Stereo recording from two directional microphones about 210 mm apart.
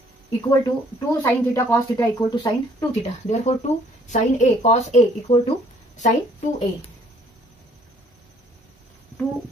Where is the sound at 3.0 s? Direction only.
30° left (ahead or behind).